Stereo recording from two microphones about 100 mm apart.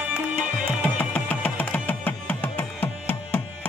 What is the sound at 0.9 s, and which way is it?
Music, 15° left (ahead or behind).